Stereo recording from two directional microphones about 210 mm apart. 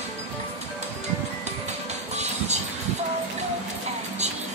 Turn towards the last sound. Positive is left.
turn(degrees=-30)  # may be behind; listen again after turning